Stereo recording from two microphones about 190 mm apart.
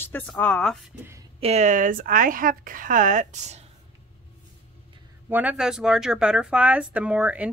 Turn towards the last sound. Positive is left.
turn(degrees=-10)  # may be behind; listen again after turning